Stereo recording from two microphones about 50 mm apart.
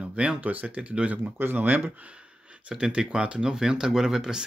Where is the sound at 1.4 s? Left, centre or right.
Right.